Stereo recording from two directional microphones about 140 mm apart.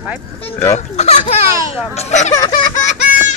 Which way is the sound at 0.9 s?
55° left (ahead or behind).